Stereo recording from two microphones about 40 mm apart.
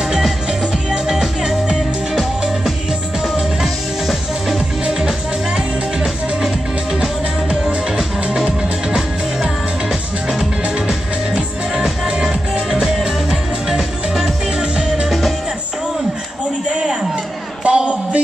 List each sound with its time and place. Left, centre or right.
0.5 s music: centre
3.6 s music: centre
5.9 s music: centre
15.0 s music: centre
16.6 s a sound: right